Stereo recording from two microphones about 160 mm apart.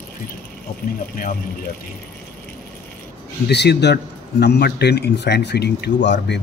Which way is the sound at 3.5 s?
90° left.